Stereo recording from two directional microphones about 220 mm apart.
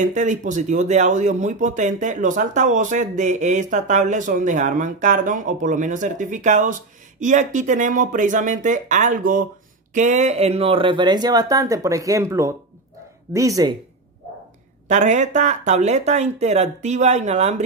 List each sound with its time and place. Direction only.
0.0 s speech: 35° right (ahead or behind); by 13.7 s 15° right (ahead or behind)
14.9 s speech: 35° right (ahead or behind)